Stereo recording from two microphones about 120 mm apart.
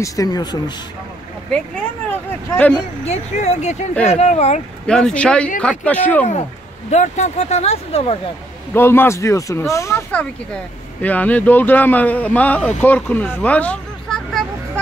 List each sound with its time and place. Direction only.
0.0 s speech: 30° left (ahead or behind)
2.5 s speech: 10° left (ahead or behind)
3.1 s speech: 70° left (ahead or behind)
4.8 s speech: 5° left (ahead or behind)
6.9 s speech: 75° left (ahead or behind); by 8.2 s 55° left (ahead or behind)
8.7 s speech: 20° left (ahead or behind)
10.1 s speech: 10° left (ahead or behind)